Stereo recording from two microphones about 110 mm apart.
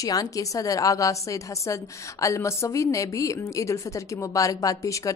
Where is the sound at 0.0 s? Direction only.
35° left (ahead or behind).